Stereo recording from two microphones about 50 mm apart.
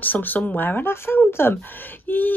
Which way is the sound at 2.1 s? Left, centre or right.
Left.